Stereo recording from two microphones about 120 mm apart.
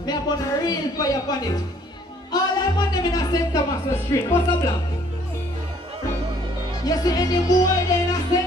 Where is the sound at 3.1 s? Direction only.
30° left (ahead or behind).